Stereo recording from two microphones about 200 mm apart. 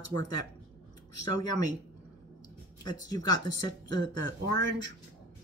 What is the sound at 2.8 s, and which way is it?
Speech, 20° left (ahead or behind).